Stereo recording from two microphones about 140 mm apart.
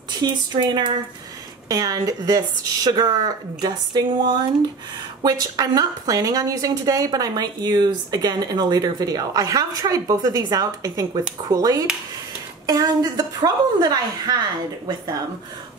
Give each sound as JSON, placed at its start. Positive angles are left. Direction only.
{"t": 0.2, "sound": "a woman's voice", "side_deg": -30}